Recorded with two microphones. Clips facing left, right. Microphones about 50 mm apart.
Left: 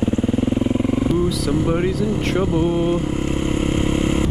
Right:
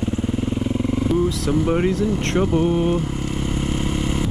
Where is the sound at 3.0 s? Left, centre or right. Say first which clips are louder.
Left 4 dB; centre.